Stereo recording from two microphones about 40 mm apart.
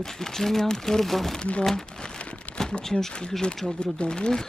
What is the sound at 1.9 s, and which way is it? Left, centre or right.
Crumpling, centre.